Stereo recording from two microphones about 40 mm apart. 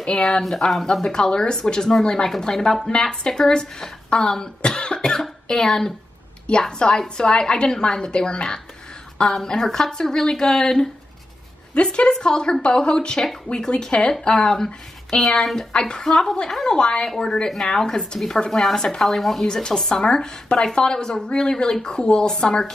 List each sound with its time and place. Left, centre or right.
0.0 s a woman's voice: left
0.4 s a woman's voice: centre
1.0 s a woman's voice: centre
9.3 s a woman's voice: centre
11.7 s a woman's voice: left; by 15.6 s centre
15.7 s a woman's voice: left
16.1 s a woman's voice: centre
19.4 s a woman's voice: left